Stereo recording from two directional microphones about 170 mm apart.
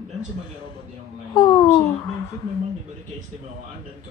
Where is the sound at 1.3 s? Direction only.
25° left (ahead or behind).